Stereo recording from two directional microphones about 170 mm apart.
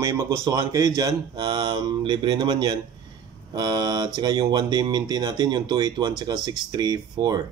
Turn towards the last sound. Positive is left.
turn(degrees=-25)  # may be behind; listen again after turning